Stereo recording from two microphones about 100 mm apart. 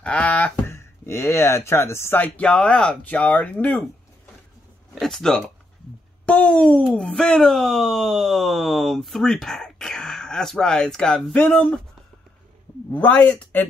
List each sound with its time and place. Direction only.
0.0 s a sound: 15° left (ahead or behind)
0.7 s speech: 25° left (ahead or behind)
4.9 s speech: 5° left (ahead or behind)
12.9 s speech: 15° left (ahead or behind)